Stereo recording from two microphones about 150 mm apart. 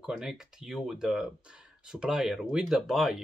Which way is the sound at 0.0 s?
5° right (ahead or behind).